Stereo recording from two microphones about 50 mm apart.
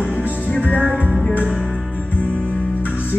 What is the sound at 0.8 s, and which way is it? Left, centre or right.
Music, right.